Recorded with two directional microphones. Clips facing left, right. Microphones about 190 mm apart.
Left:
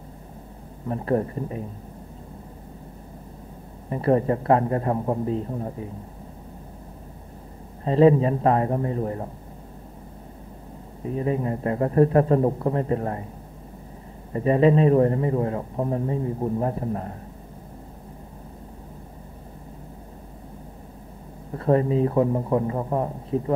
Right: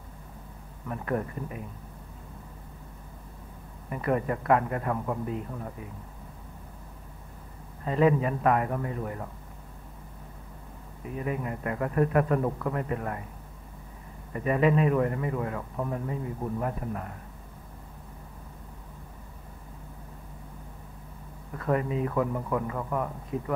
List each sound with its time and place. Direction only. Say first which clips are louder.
0.8 s a man's voice: left 7 dB; 30° left (ahead or behind)
3.9 s a man's voice: left 7 dB; 30° left (ahead or behind)
7.8 s a man's voice: left 7 dB; 30° left (ahead or behind)
11.1 s a man's voice: left 7 dB; 30° left (ahead or behind)
14.3 s a man's voice: left 6 dB; 30° left (ahead or behind)
21.5 s a man's voice: left 7 dB; 30° left (ahead or behind)